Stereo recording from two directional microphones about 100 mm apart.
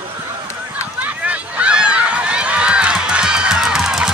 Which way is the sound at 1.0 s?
15° right (ahead or behind).